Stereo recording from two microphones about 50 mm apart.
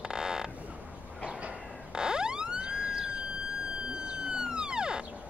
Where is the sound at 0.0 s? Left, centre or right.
Centre.